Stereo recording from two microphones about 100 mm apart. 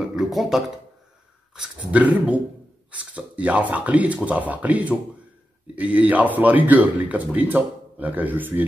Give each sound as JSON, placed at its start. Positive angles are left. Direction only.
{"t": 0.1, "sound": "speech", "side_deg": 0}